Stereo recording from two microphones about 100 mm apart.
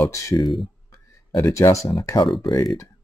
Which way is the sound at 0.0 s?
35° left (ahead or behind).